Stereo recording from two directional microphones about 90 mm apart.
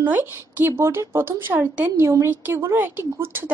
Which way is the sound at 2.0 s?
30° right (ahead or behind).